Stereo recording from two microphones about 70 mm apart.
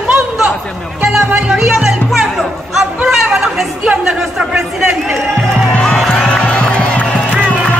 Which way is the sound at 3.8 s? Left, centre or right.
Centre.